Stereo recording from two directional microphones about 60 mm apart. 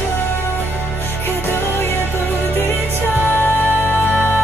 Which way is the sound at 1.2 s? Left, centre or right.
Left.